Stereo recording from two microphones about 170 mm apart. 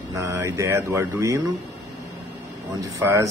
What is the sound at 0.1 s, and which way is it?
A man's voice, 20° right (ahead or behind).